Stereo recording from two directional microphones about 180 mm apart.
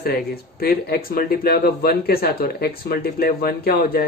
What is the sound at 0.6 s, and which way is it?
Speech, 55° left (ahead or behind).